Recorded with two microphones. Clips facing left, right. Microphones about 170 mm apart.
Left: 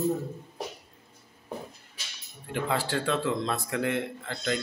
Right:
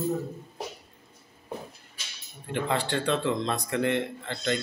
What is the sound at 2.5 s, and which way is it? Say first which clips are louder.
Speech: right 1 dB; 5° left (ahead or behind).